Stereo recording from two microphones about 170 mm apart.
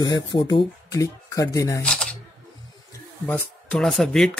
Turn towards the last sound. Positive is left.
turn(degrees=5)  # may be behind; listen again after turning